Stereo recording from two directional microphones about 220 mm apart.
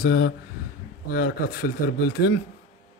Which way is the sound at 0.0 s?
45° left (ahead or behind).